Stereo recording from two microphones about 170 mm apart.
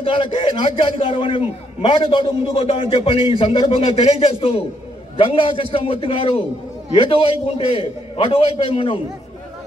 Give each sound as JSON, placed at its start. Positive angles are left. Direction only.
{"t": 0.0, "sound": "a man's voice", "side_deg": 30}